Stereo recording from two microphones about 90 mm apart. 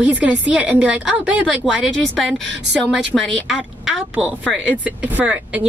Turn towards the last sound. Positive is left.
turn(degrees=-15)  # may be behind; listen again after turning